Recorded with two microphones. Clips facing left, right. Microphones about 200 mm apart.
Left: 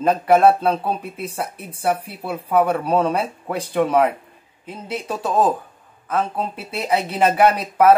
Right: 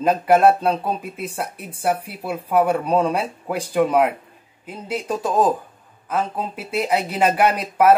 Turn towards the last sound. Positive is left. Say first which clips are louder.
# left 2 dB
turn(degrees=-10)  # may be behind; listen again after turning